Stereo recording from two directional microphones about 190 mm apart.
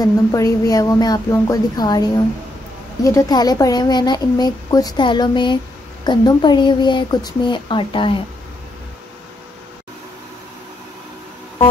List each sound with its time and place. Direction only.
0.0 s speech: 20° left (ahead or behind)